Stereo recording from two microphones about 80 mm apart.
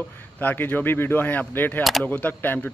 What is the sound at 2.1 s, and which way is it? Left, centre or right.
Speech, left.